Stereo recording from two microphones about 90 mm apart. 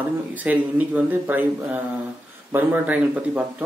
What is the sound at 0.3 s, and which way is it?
Speech, 20° right (ahead or behind).